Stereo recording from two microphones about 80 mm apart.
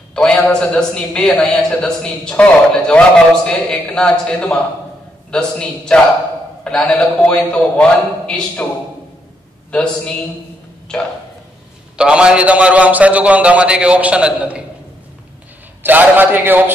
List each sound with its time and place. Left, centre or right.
0.1 s a man's voice: centre
9.7 s a man's voice: centre
12.0 s a man's voice: centre
15.8 s a man's voice: right